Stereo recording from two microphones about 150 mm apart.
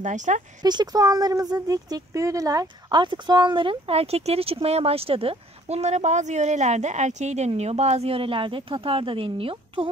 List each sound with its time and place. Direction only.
0.0 s speech: 55° right (ahead or behind)
0.6 s speech: 25° right (ahead or behind)